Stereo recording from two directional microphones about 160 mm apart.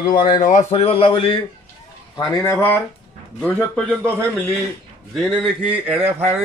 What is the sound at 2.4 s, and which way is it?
Speech, 15° left (ahead or behind).